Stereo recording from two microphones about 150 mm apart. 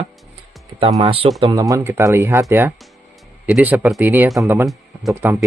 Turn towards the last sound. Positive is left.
turn(degrees=-15)  # may be behind; listen again after turning